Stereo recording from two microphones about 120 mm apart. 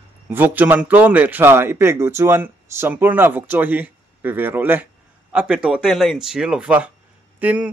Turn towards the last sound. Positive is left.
turn(degrees=-10)  # may be behind; listen again after turning